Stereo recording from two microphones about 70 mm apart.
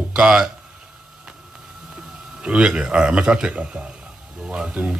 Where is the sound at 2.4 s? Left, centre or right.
Centre.